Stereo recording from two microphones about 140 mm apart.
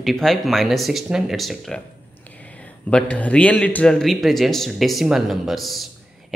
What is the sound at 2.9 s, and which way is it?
Speech, 10° left (ahead or behind).